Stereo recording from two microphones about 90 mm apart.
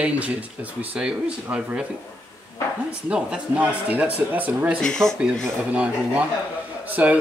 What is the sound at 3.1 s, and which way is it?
Speech, 15° right (ahead or behind).